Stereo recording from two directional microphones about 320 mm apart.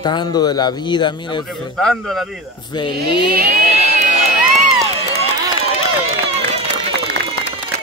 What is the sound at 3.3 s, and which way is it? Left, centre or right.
Crowd, right.